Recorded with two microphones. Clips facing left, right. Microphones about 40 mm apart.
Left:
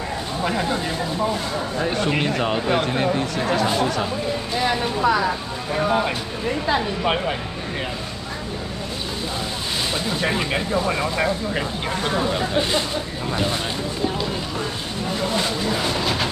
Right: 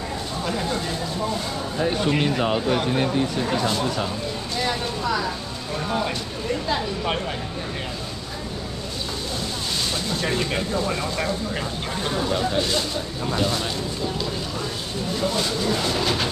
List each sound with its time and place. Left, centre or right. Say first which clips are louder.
0.4 s speech: left 3 dB; left
2.0 s speech: even; centre
10.0 s speech: left 2 dB; centre
15.1 s speech: left 1 dB; left